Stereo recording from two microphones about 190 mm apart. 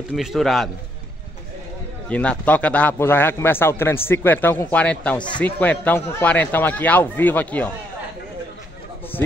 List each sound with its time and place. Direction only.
0.1 s a man's voice: centre (ahead or behind)
2.0 s a man's voice: 5° left (ahead or behind)